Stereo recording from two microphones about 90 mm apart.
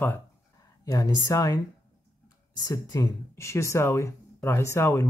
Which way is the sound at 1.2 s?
40° left (ahead or behind).